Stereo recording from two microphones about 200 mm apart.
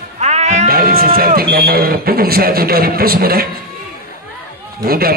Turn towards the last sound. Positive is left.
turn(degrees=-50)  # may be behind; listen again after turning